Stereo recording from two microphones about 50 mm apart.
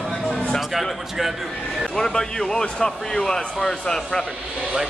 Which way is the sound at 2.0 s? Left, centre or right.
Centre.